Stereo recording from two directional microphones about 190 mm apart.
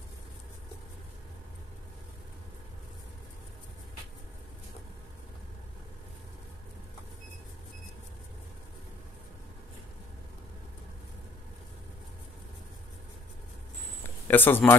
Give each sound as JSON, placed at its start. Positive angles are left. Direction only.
{"t": 14.2, "sound": "speech", "side_deg": 10}